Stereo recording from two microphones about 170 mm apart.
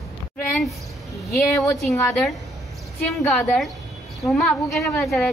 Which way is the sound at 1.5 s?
20° left (ahead or behind).